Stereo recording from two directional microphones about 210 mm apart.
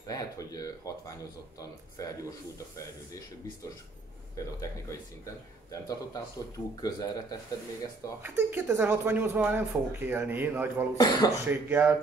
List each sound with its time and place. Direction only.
0.0 s speech: 15° left (ahead or behind)
2.0 s speech: 15° left (ahead or behind)
5.2 s speech: 15° left (ahead or behind)
8.2 s speech: 10° right (ahead or behind)
11.0 s speech: 20° left (ahead or behind)
11.4 s speech: 10° right (ahead or behind)